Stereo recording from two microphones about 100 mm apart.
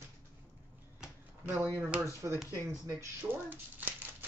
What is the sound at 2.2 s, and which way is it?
Speech, 30° right (ahead or behind).